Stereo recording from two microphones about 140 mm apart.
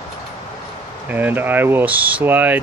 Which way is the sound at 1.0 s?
15° right (ahead or behind).